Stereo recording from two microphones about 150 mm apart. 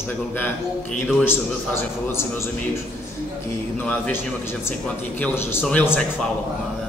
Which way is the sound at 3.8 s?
10° left (ahead or behind).